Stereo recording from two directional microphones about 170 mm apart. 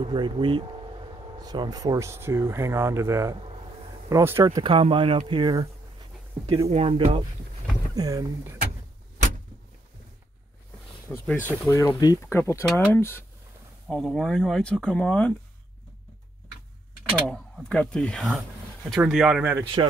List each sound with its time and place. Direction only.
0.0 s speech: 30° right (ahead or behind)
6.7 s speech: 35° right (ahead or behind)
7.9 s speech: 20° right (ahead or behind)
11.1 s speech: 10° left (ahead or behind)
13.8 s speech: centre (ahead or behind)
17.1 s speech: centre (ahead or behind)
19.6 s speech: 30° right (ahead or behind)